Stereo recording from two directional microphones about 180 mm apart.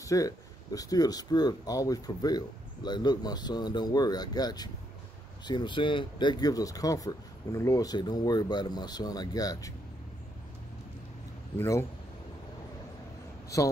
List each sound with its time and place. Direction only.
0.0 s speech: 20° left (ahead or behind)
11.5 s speech: 15° left (ahead or behind)